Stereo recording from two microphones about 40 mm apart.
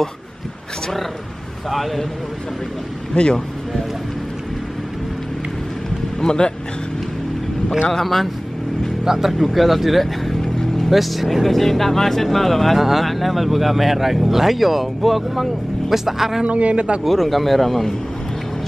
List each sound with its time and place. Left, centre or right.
1.7 s speech: centre
3.2 s speech: left
6.2 s speech: centre
7.9 s speech: centre
9.0 s speech: centre
9.4 s speech: centre
16.4 s speech: right
17.0 s speech: centre